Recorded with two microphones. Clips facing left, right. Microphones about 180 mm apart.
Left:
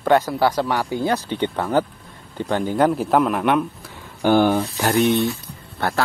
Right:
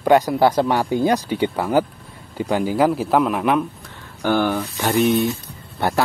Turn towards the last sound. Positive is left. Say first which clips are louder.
# right 2 dB
turn(degrees=-15)  # may be behind; listen again after turning